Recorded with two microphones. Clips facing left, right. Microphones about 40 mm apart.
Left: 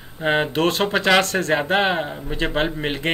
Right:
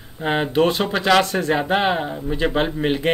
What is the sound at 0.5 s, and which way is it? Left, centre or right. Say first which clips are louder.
Speech: right 2 dB; left.